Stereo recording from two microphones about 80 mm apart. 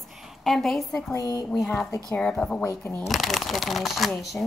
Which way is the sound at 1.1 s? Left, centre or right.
Left.